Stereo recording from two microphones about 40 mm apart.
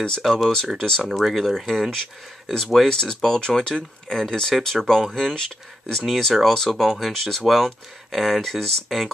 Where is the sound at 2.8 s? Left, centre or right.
Centre.